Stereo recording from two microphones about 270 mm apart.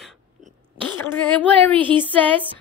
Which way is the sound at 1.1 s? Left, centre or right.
Centre.